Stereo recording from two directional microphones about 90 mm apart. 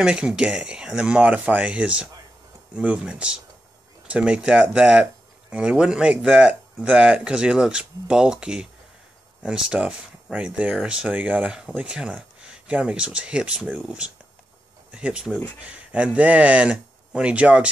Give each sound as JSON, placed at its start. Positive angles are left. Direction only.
{"t": 0.0, "sound": "speech", "side_deg": -10}